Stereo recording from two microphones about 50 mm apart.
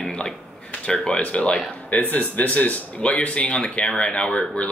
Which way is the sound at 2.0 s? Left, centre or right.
Left.